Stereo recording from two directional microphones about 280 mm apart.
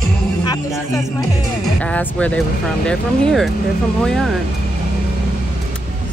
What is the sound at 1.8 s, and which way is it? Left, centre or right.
Speech, centre.